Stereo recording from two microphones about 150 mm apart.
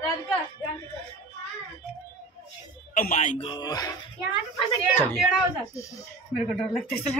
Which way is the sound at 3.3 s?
35° left (ahead or behind).